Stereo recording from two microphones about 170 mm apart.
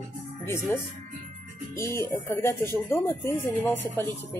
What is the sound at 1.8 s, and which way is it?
Speech, 15° left (ahead or behind).